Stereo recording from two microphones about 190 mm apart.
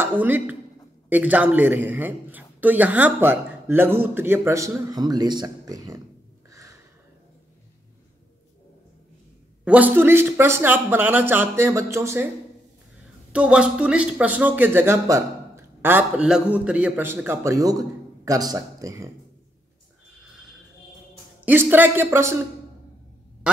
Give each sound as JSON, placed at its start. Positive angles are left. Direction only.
{"t": 0.0, "sound": "a woman's voice", "side_deg": -10}
{"t": 6.5, "sound": "a sound", "side_deg": -15}
{"t": 9.7, "sound": "speech", "side_deg": -10}
{"t": 13.3, "sound": "speech", "side_deg": -5}
{"t": 21.5, "sound": "speech", "side_deg": -10}